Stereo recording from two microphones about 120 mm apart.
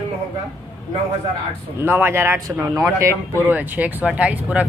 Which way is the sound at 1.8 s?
20° right (ahead or behind).